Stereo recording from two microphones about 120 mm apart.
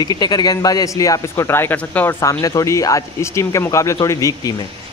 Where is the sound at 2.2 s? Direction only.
30° left (ahead or behind).